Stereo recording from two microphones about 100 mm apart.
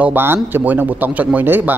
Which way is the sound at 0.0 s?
20° right (ahead or behind).